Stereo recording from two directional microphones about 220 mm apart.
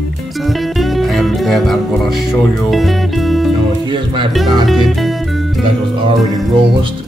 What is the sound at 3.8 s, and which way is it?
Speech, 20° right (ahead or behind).